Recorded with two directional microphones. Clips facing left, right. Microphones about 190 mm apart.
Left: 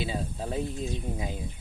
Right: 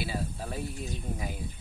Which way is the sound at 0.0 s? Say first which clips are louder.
Left 2 dB; 20° left (ahead or behind).